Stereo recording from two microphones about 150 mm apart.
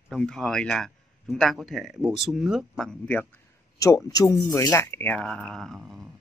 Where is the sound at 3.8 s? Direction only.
20° left (ahead or behind).